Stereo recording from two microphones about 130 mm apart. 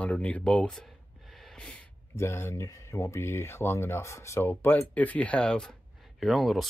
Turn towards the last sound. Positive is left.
turn(degrees=0)  # may be behind; listen again after turning